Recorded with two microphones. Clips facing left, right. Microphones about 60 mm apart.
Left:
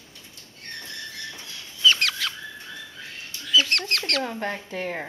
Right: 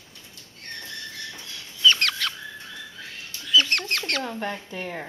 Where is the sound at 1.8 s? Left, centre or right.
Centre.